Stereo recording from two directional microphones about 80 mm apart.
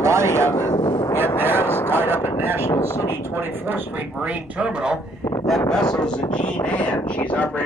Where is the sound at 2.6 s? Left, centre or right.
Left.